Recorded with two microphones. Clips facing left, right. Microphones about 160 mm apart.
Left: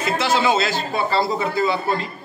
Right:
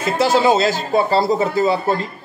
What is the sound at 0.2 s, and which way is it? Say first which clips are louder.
A man's voice: right 6 dB; 40° right (ahead or behind).